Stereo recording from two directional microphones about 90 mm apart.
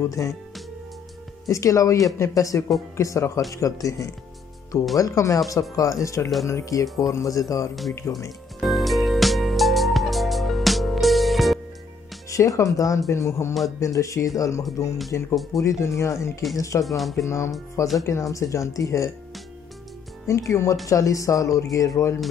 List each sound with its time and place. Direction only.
0.2 s speech: 35° left (ahead or behind)
1.5 s speech: 35° left (ahead or behind)
8.5 s music: centre (ahead or behind)
12.3 s speech: 35° left (ahead or behind)
16.8 s speech: centre (ahead or behind)
17.2 s speech: 35° left (ahead or behind)
20.2 s speech: 35° left (ahead or behind)